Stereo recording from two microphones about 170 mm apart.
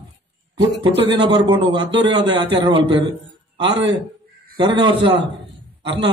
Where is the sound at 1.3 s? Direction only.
25° right (ahead or behind).